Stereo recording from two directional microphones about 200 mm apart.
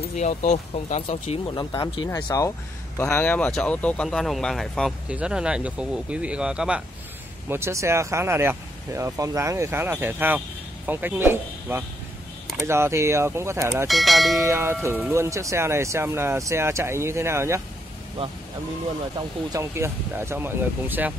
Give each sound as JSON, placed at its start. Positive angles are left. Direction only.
{"t": 0.1, "sound": "speech", "side_deg": 35}
{"t": 13.8, "sound": "speech", "side_deg": 0}
{"t": 14.5, "sound": "speech", "side_deg": -10}
{"t": 19.1, "sound": "speech", "side_deg": -15}